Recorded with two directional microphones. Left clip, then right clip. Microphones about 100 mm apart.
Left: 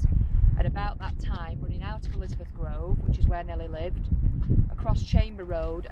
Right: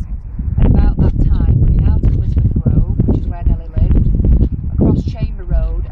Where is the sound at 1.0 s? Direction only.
25° left (ahead or behind).